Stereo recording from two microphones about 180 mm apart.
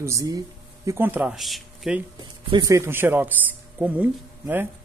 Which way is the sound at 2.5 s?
20° right (ahead or behind).